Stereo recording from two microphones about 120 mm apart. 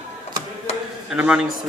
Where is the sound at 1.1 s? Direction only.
10° right (ahead or behind).